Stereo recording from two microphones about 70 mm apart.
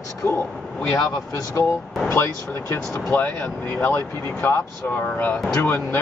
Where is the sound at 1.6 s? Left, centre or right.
Left.